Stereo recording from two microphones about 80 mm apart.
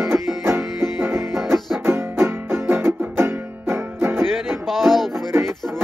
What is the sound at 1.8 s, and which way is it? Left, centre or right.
Music, right.